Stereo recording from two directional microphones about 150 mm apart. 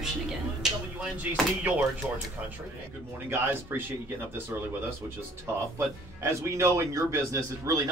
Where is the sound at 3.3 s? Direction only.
15° right (ahead or behind).